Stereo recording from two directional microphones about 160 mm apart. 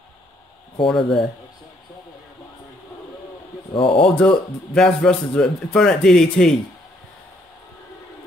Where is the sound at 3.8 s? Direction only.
5° left (ahead or behind).